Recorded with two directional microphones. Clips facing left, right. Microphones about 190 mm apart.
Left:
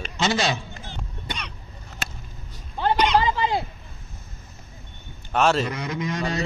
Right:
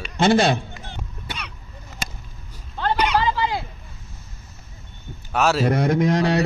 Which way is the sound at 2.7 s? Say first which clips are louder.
Left 1 dB; 15° left (ahead or behind).